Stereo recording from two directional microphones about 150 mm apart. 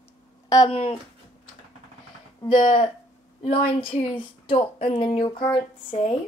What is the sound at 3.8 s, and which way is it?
Speech, 40° left (ahead or behind).